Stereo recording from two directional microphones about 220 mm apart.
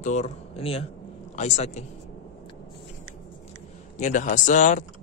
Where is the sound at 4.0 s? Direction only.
35° left (ahead or behind).